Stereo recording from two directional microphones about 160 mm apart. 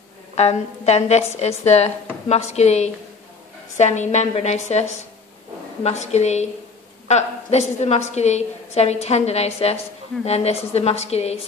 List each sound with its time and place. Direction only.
0.4 s a woman's voice: 45° left (ahead or behind)